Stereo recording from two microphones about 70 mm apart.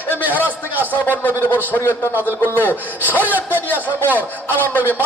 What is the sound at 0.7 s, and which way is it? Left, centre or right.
A man's voice, left.